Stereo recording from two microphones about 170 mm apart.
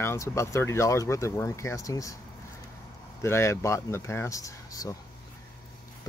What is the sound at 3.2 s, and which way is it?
Speech, 15° left (ahead or behind).